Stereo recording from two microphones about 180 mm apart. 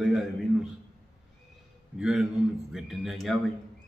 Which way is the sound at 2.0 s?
Centre (ahead or behind).